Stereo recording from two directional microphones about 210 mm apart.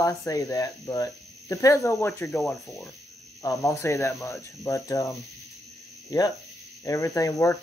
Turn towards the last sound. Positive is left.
turn(degrees=15)  # may be behind; listen again after turning